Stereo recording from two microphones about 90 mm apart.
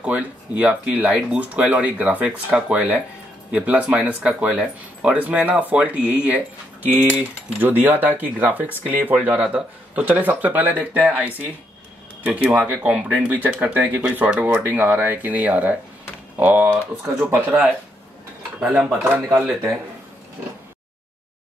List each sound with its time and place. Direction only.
0.0 s speech: 15° right (ahead or behind)
17.3 s speech: 25° right (ahead or behind)
18.6 s speech: 5° right (ahead or behind)